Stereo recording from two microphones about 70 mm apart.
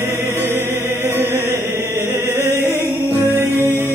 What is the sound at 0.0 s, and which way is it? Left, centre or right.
Music, right.